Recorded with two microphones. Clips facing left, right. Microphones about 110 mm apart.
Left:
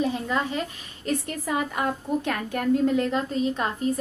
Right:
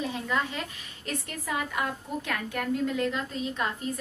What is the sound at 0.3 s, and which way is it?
A woman's voice, 35° left (ahead or behind).